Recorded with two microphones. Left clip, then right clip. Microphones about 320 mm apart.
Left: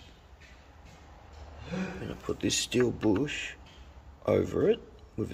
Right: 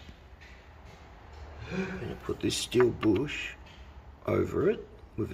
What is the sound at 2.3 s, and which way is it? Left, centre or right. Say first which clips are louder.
Speech: right 1 dB; centre.